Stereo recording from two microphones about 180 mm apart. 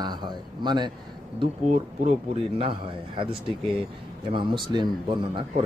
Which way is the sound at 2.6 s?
30° right (ahead or behind).